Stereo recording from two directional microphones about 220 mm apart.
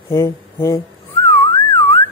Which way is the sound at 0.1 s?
15° left (ahead or behind).